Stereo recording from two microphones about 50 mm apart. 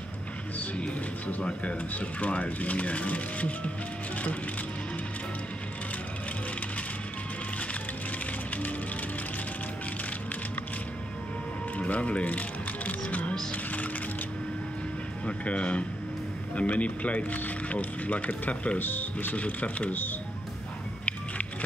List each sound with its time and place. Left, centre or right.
1.4 s speech: left
11.8 s music: left
13.3 s music: centre
15.2 s speech: left
18.8 s speech: left
21.0 s music: left